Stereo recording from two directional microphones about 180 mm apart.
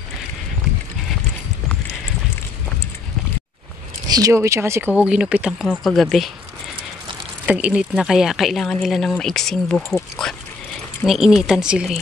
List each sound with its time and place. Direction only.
4.1 s speech: 20° right (ahead or behind)
5.7 s speech: 5° left (ahead or behind)
7.4 s speech: 5° right (ahead or behind); by 10.0 s 10° left (ahead or behind)
11.1 s speech: centre (ahead or behind)